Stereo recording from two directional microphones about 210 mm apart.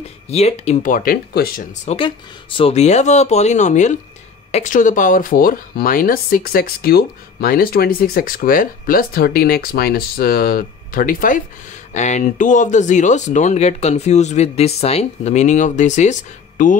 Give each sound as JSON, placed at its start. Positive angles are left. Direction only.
{"t": 0.3, "sound": "speech", "side_deg": 30}
{"t": 1.9, "sound": "speech", "side_deg": 25}